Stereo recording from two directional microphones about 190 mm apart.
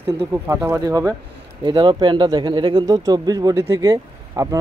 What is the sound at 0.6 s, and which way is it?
Speech, 15° right (ahead or behind).